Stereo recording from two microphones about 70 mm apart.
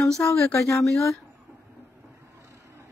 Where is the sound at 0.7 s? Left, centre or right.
Left.